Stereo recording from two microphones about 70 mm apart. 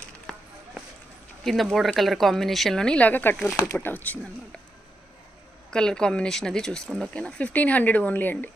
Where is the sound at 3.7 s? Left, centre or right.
Left.